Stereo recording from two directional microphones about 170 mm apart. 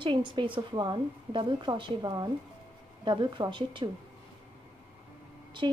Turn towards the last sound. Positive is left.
turn(degrees=-30)  # may be behind; listen again after turning